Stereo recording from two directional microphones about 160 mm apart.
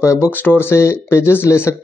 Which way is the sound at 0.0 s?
20° left (ahead or behind).